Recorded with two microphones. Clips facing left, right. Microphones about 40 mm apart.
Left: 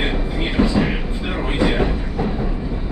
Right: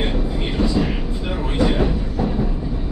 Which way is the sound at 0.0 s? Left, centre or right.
Left.